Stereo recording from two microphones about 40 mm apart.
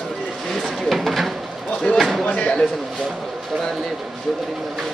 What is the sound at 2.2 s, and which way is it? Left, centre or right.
Speech, left.